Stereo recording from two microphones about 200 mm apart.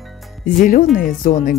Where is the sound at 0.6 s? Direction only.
40° left (ahead or behind).